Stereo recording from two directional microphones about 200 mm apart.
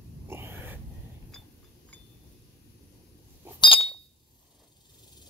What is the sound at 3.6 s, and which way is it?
Chink, 30° left (ahead or behind).